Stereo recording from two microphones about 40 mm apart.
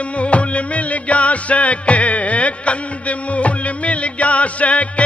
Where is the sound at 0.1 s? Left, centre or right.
Left.